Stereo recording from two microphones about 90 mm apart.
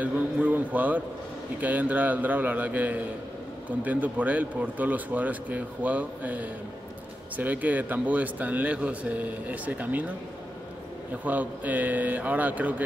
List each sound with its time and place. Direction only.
0.0 s a sound: 20° right (ahead or behind)
1.6 s speech: 20° right (ahead or behind)
11.2 s speech: 20° right (ahead or behind)